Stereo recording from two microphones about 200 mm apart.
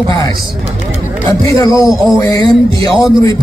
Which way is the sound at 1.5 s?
15° left (ahead or behind).